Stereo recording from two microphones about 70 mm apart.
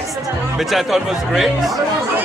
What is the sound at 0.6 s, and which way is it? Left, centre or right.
Speech, centre.